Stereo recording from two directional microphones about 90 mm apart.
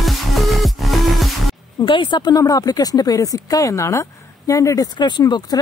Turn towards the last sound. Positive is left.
turn(degrees=55)  # may be behind; listen again after turning